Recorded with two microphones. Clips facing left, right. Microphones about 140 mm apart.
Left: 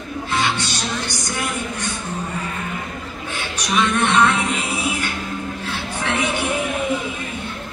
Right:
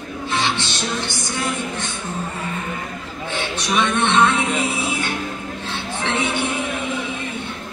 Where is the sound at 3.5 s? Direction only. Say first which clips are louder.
Left 1 dB; 25° right (ahead or behind).